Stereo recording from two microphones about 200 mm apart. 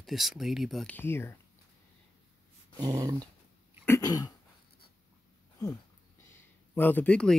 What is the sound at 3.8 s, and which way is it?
Throat clearing, 15° left (ahead or behind).